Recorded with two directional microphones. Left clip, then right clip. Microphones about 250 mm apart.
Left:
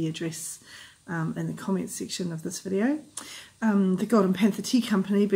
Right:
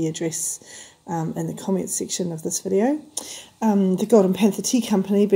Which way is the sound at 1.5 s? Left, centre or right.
Centre.